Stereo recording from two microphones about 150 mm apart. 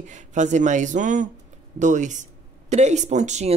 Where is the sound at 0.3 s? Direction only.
55° right (ahead or behind).